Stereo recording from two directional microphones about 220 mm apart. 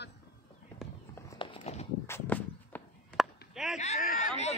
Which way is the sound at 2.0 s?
10° left (ahead or behind).